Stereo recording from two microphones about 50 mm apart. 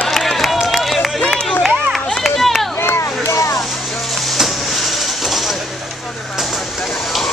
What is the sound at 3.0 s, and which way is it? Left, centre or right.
Boat, left.